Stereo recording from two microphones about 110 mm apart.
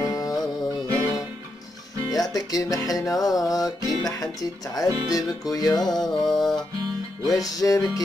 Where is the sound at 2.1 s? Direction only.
35° left (ahead or behind).